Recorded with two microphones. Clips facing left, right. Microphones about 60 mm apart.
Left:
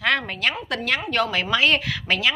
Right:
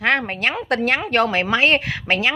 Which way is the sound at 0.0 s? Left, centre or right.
Right.